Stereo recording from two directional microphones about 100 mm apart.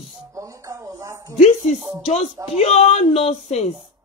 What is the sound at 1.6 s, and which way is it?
Speech, 90° left.